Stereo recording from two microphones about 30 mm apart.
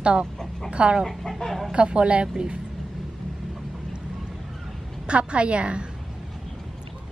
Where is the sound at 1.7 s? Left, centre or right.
Right.